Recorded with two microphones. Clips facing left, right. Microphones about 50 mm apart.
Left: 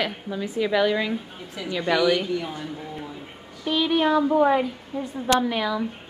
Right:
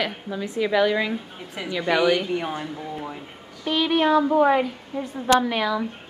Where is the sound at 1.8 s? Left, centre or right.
Centre.